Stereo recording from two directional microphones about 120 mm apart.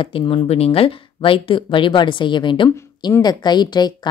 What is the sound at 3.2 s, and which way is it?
Speech, 35° left (ahead or behind).